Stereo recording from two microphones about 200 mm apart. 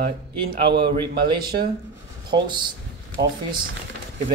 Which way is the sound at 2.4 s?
20° right (ahead or behind).